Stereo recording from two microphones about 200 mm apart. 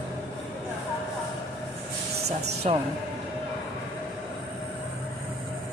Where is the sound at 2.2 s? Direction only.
30° right (ahead or behind).